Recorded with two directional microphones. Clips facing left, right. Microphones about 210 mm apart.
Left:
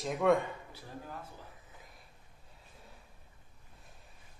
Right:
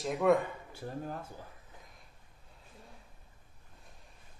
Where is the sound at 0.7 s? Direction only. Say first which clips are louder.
Right 7 dB; 45° right (ahead or behind).